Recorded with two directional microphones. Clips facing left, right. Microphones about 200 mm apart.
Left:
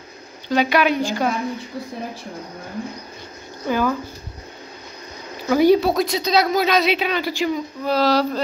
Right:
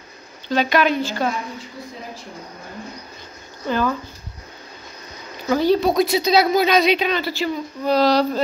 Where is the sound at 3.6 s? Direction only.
10° left (ahead or behind).